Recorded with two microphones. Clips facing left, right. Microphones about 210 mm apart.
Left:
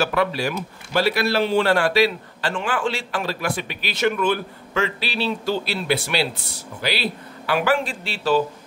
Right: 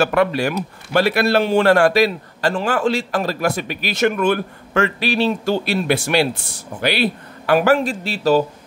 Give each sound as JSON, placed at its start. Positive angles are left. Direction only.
{"t": 0.0, "sound": "a man's voice", "side_deg": -55}